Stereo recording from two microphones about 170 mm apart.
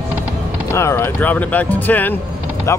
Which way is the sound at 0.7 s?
15° left (ahead or behind).